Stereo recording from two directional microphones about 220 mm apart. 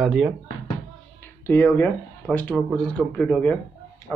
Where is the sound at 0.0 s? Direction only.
Centre (ahead or behind).